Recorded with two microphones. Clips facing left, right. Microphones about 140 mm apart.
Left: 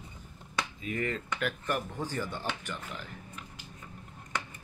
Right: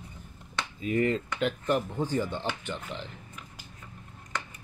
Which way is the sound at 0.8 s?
30° right (ahead or behind).